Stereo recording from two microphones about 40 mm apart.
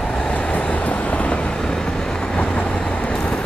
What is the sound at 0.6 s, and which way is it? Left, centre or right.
Vehicle, left.